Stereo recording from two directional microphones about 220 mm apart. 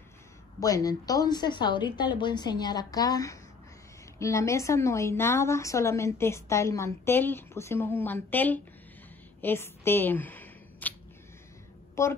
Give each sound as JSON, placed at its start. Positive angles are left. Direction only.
{"t": 0.6, "sound": "a woman's voice", "side_deg": 15}
{"t": 9.4, "sound": "a sound", "side_deg": 10}
{"t": 11.9, "sound": "a woman's voice", "side_deg": 10}